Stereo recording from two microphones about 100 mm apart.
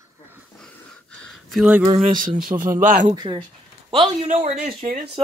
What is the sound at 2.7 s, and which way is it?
Speech, 35° right (ahead or behind).